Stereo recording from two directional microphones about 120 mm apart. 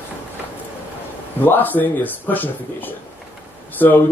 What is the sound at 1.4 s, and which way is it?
Speech, 15° left (ahead or behind).